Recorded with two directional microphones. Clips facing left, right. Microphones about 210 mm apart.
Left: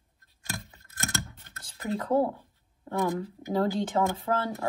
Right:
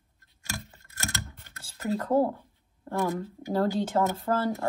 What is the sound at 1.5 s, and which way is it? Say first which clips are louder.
Speech: right 2 dB; 10° right (ahead or behind).